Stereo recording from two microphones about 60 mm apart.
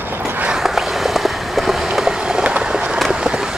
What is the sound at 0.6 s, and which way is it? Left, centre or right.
Vehicle, centre.